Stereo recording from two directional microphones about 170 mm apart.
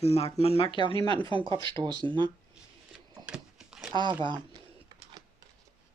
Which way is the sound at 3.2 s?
5° right (ahead or behind).